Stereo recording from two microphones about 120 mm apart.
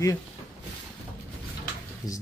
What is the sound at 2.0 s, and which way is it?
Speech, 25° left (ahead or behind).